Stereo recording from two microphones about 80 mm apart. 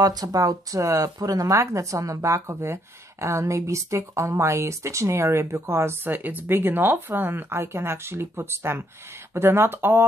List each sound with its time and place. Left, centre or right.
0.0 s speech: right
6.1 s speech: right